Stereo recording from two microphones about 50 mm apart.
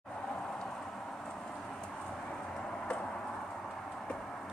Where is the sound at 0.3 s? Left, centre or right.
Centre.